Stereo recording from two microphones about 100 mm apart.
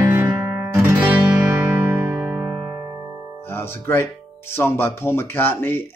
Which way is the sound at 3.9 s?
20° left (ahead or behind).